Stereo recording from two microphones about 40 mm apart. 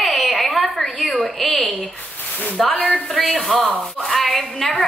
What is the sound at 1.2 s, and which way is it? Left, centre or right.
A woman's voice, centre.